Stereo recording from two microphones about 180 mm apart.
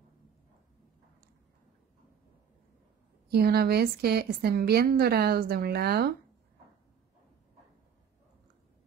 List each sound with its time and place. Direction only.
3.3 s a woman's voice: 60° right (ahead or behind)